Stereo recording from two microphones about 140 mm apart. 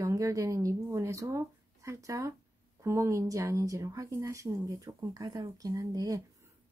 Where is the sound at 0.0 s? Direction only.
25° right (ahead or behind).